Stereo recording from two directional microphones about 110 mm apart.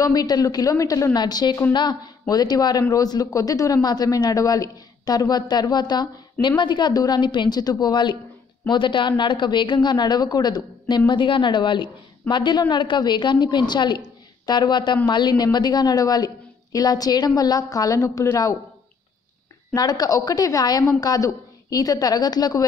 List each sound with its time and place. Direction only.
0.0 s a man's voice: 35° left (ahead or behind)
19.7 s a man's voice: 35° left (ahead or behind)